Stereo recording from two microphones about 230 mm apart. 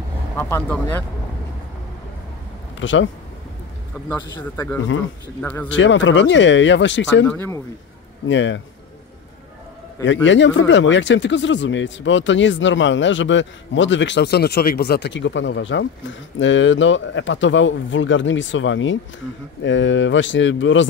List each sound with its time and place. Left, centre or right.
0.4 s speech: centre
2.8 s speech: left
4.4 s speech: centre
5.7 s speech: left
7.2 s speech: centre
8.3 s speech: left
10.0 s speech: left